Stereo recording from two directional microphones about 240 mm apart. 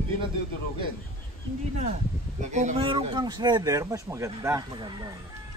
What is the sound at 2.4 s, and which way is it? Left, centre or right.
Speech, right.